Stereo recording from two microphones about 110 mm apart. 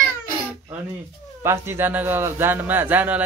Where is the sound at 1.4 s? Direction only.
20° right (ahead or behind).